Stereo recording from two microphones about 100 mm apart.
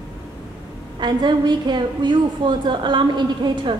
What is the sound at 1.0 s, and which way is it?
A woman's voice, 45° right (ahead or behind).